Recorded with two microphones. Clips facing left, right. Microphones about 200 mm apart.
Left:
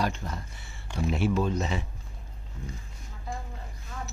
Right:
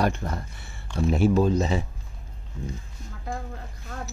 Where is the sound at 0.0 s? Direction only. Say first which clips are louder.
Right 5 dB; 55° right (ahead or behind).